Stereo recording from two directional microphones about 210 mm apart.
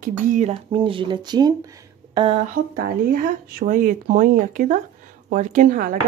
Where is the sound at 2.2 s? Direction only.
30° right (ahead or behind).